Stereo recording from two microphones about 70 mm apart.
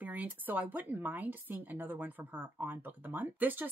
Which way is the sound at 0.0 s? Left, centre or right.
Right.